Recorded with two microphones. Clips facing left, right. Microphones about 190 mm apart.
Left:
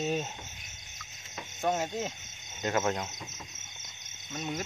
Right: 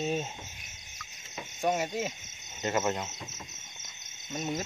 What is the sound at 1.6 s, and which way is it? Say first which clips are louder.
Speech: right 1 dB; 10° right (ahead or behind).